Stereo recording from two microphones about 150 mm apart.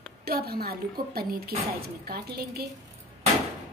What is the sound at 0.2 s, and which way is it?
A woman's voice, 90° right.